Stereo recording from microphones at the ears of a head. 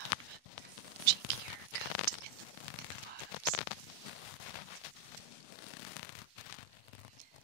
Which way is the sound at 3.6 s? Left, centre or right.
Left.